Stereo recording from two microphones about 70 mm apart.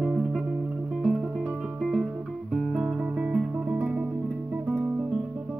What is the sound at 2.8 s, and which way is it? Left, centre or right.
Music, centre.